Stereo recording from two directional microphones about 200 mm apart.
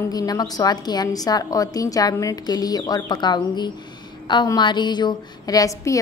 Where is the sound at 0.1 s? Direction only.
20° left (ahead or behind).